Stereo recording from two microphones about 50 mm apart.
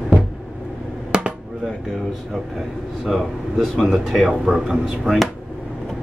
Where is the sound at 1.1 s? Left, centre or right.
Centre.